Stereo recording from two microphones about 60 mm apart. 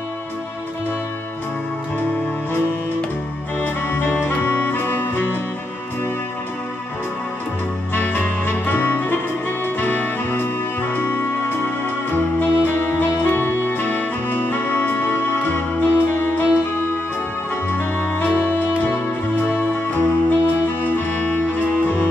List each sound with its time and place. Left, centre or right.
3.6 s music: left
7.9 s music: left
17.6 s music: left